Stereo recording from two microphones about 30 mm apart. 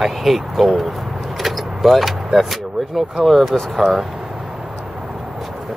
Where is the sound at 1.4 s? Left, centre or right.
Centre.